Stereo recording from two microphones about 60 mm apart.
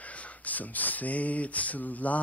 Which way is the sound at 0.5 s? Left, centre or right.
Left.